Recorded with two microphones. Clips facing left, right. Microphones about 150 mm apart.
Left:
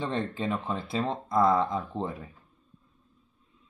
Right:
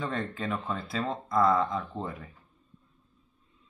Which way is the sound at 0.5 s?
10° left (ahead or behind).